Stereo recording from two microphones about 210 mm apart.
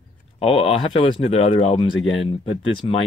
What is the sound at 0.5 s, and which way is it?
Speech, 25° left (ahead or behind).